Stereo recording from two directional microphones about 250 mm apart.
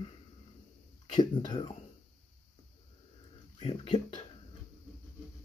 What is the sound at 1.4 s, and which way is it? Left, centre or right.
Speech, centre.